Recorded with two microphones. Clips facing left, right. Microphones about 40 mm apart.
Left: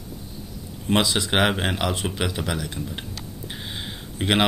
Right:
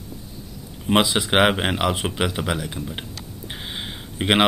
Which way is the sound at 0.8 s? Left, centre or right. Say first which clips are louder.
Right 3 dB; centre.